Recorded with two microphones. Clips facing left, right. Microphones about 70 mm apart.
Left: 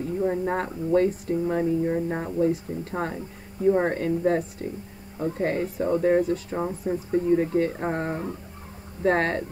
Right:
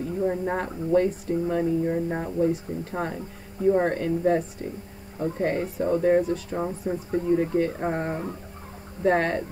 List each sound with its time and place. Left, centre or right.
0.2 s speech: centre
0.7 s speech: centre
1.5 s speech: centre